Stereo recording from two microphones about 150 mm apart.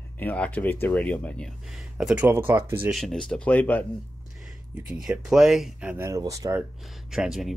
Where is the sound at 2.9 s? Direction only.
Centre (ahead or behind).